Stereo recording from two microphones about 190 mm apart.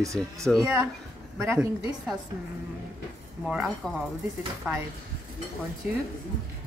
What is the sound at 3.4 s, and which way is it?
Speech, centre (ahead or behind).